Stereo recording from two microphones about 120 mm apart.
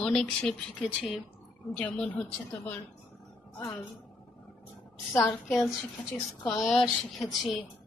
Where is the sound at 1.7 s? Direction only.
10° left (ahead or behind).